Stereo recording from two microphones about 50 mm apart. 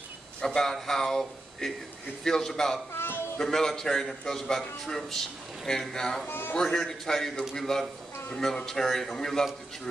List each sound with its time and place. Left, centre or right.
0.4 s speech: centre
2.9 s a sound: left
3.4 s speech: centre
6.2 s a man's voice: left
6.5 s speech: centre